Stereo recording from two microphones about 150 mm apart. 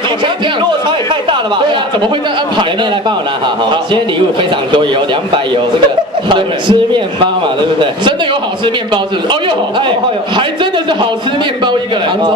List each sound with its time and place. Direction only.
3.9 s a man's voice: 35° right (ahead or behind)
6.2 s a man's voice: 30° right (ahead or behind)
8.6 s a man's voice: 35° right (ahead or behind)